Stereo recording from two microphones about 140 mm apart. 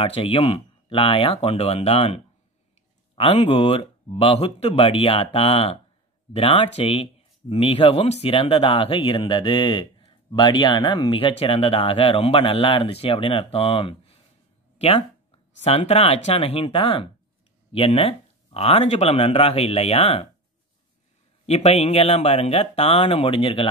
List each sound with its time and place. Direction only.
0.0 s speech: 40° left (ahead or behind)
21.5 s speech: 50° left (ahead or behind)